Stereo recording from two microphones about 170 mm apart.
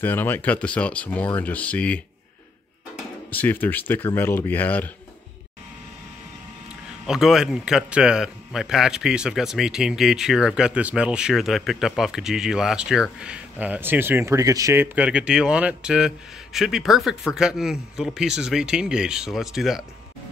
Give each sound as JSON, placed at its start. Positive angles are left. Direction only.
{"t": 0.0, "sound": "speech", "side_deg": 10}
{"t": 3.3, "sound": "speech", "side_deg": 10}
{"t": 7.1, "sound": "a man's voice", "side_deg": 0}